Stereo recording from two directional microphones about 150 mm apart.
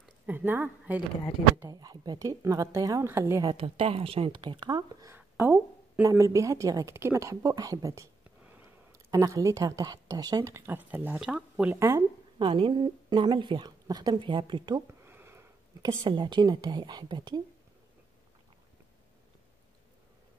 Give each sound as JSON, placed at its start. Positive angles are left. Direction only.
{"t": 0.3, "sound": "speech", "side_deg": -15}
{"t": 1.6, "sound": "speech", "side_deg": -25}
{"t": 3.5, "sound": "a woman's voice", "side_deg": -40}
{"t": 5.1, "sound": "a sound", "side_deg": -15}
{"t": 6.0, "sound": "a woman's voice", "side_deg": -20}
{"t": 11.7, "sound": "speech", "side_deg": -20}
{"t": 12.4, "sound": "a woman's voice", "side_deg": -35}
{"t": 14.9, "sound": "a sound", "side_deg": -15}
{"t": 16.0, "sound": "speech", "side_deg": -30}